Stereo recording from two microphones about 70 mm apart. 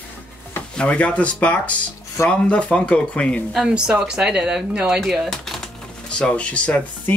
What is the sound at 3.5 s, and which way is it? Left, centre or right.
Speech, centre.